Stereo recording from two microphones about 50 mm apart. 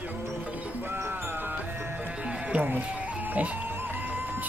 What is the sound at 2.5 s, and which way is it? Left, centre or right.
Speech, right.